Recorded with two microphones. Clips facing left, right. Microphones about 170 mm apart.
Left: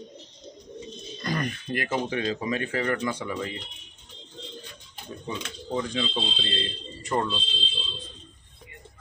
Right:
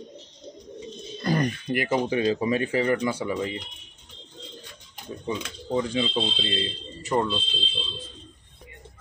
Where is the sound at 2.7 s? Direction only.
15° right (ahead or behind).